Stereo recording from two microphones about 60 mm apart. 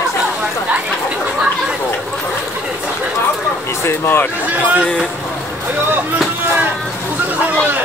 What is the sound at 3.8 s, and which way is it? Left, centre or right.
Speech, left.